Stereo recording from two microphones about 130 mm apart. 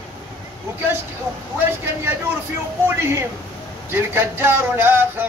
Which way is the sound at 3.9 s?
15° right (ahead or behind).